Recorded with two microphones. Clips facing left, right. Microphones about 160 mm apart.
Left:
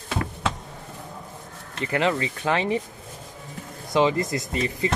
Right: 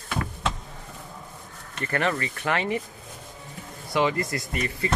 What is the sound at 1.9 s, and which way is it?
Speech, 15° left (ahead or behind).